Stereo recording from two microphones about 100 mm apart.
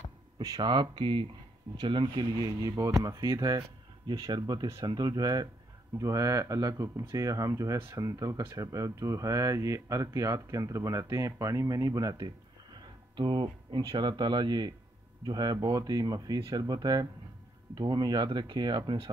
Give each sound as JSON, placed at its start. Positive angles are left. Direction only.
{"t": 0.6, "sound": "speech", "side_deg": -50}
{"t": 2.4, "sound": "speech", "side_deg": -35}
{"t": 13.1, "sound": "speech", "side_deg": -50}